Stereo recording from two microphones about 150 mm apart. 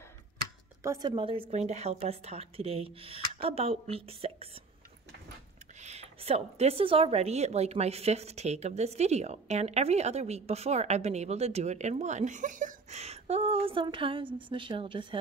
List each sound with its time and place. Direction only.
0.8 s speech: 25° right (ahead or behind)
1.5 s speech: 45° right (ahead or behind)
5.8 s speech: 45° right (ahead or behind)